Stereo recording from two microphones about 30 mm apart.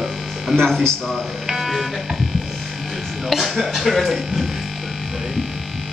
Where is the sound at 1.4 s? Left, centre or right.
Centre.